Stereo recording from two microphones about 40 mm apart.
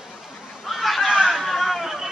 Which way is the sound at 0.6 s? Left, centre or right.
Centre.